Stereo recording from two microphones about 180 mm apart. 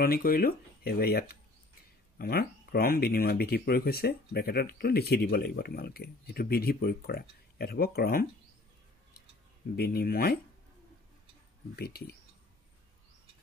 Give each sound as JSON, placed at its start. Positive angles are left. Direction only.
{"t": 0.0, "sound": "speech", "side_deg": 55}
{"t": 9.8, "sound": "speech", "side_deg": 60}
{"t": 11.7, "sound": "speech", "side_deg": 60}